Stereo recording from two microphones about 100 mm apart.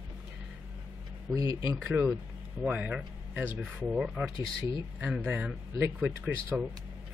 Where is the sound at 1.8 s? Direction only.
15° right (ahead or behind).